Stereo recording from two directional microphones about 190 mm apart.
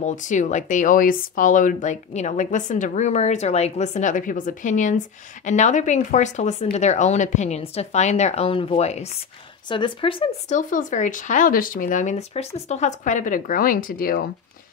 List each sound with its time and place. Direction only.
0.0 s speech: 40° left (ahead or behind)
10.5 s speech: 45° left (ahead or behind)